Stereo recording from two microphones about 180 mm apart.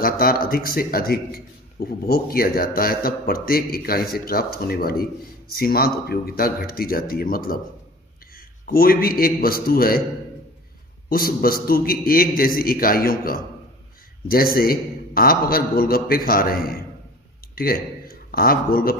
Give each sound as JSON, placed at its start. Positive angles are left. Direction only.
{"t": 0.0, "sound": "a man's voice", "side_deg": 55}
{"t": 8.6, "sound": "a man's voice", "side_deg": 55}
{"t": 11.1, "sound": "a man's voice", "side_deg": 55}